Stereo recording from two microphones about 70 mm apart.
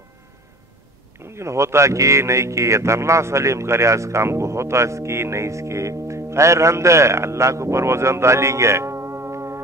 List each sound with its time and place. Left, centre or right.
1.2 s speech: right